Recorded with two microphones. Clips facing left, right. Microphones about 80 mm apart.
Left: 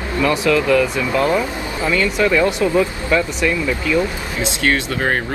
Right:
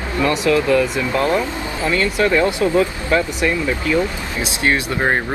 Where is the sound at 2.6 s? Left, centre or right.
Centre.